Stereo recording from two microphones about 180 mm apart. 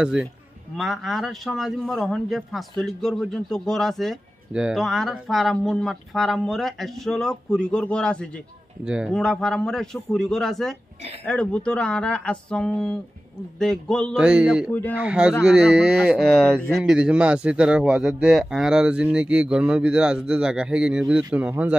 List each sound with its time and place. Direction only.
0.0 s a man's voice: 5° right (ahead or behind)
8.8 s a man's voice: 5° right (ahead or behind)
14.7 s speech: 10° left (ahead or behind)
15.0 s a man's voice: 5° right (ahead or behind)